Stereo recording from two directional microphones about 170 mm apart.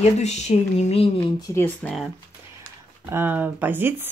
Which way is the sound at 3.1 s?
10° right (ahead or behind).